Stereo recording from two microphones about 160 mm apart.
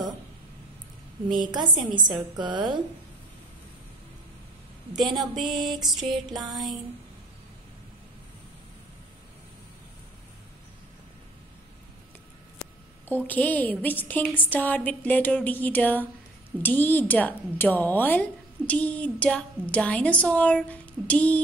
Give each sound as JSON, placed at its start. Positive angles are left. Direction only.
{"t": 1.3, "sound": "a woman's voice", "side_deg": -30}
{"t": 4.9, "sound": "speech", "side_deg": 0}
{"t": 13.1, "sound": "a woman's voice", "side_deg": 10}